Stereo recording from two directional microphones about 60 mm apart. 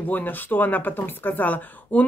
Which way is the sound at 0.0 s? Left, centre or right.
Left.